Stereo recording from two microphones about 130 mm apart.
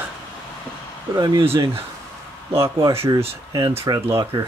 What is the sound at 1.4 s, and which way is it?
Speech, 45° right (ahead or behind).